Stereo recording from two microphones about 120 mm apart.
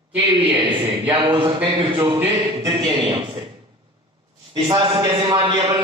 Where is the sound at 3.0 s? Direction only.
50° right (ahead or behind).